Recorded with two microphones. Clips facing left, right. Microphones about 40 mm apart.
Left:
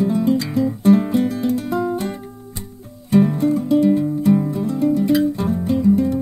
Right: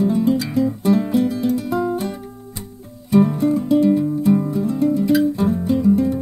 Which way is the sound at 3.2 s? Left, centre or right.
Centre.